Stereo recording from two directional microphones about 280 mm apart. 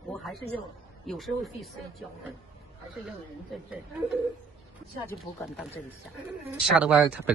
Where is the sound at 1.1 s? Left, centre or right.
Centre.